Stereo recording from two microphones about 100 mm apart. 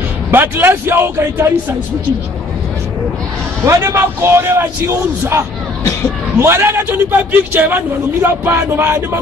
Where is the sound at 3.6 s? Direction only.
25° right (ahead or behind).